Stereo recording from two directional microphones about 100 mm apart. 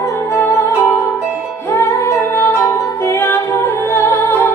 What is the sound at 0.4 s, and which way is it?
Music, 20° left (ahead or behind).